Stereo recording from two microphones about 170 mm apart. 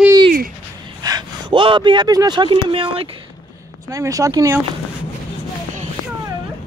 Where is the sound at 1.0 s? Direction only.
25° right (ahead or behind).